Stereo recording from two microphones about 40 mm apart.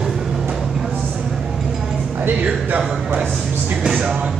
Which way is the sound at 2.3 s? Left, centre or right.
Right.